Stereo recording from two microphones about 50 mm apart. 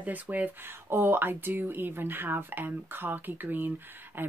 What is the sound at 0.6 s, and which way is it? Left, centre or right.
Speech, right.